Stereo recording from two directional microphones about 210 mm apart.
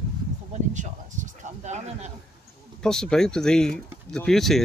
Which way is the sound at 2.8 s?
5° left (ahead or behind).